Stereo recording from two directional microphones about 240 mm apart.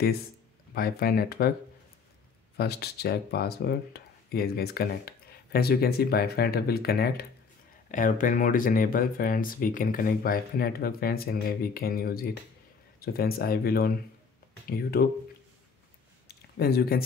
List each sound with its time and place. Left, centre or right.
0.7 s speech: left
2.5 s speech: left
16.3 s a sound: left